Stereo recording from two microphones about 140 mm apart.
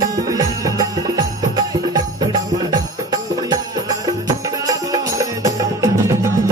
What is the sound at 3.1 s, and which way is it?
Music, 25° right (ahead or behind).